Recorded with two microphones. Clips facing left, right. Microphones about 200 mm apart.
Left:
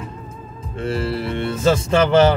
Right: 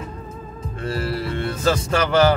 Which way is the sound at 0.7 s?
25° left (ahead or behind).